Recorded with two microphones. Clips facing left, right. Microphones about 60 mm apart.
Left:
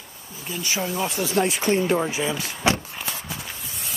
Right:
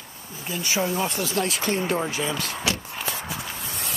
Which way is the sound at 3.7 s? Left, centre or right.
Right.